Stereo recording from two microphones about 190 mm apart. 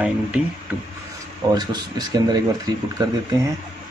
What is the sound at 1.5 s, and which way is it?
Speech, 20° right (ahead or behind).